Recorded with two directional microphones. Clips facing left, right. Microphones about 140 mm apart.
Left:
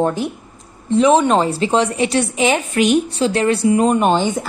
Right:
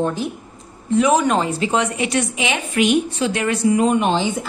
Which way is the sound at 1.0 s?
25° left (ahead or behind).